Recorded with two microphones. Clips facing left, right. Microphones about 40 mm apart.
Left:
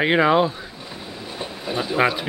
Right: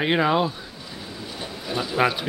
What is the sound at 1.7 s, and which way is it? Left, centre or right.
Speech, left.